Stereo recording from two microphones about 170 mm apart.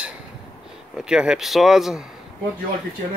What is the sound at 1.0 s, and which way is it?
Speech, 5° right (ahead or behind).